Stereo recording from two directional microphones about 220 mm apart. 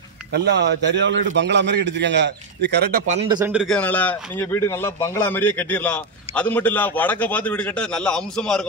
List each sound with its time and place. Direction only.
0.3 s a man's voice: 50° right (ahead or behind)
3.1 s speech: 30° right (ahead or behind)
3.3 s speech: 5° right (ahead or behind)